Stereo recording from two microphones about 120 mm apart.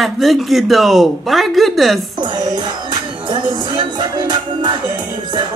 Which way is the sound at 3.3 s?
40° right (ahead or behind).